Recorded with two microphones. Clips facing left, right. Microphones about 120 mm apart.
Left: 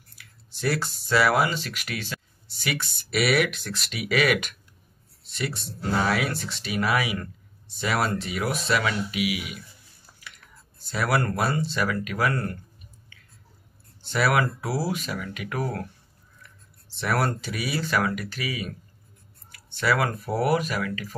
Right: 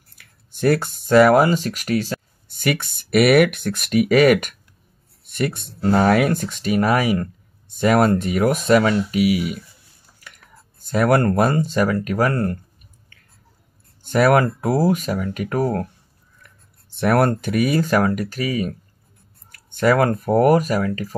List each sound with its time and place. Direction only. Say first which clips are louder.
0.2 s speech: right 9 dB; 50° right (ahead or behind)
10.9 s speech: right 8 dB; 45° right (ahead or behind)
14.0 s speech: right 8 dB; 45° right (ahead or behind)
16.9 s speech: right 8 dB; 50° right (ahead or behind)